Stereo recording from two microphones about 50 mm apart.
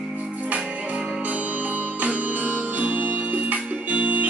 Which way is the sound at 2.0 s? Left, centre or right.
Right.